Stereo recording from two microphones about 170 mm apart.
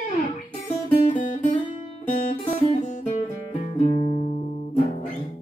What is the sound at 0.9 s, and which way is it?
Guitar, 45° left (ahead or behind).